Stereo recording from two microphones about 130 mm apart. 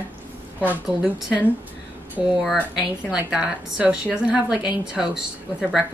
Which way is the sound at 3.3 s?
10° right (ahead or behind).